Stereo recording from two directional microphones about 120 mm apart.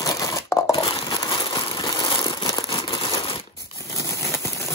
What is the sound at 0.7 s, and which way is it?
Crumpling, 45° left (ahead or behind).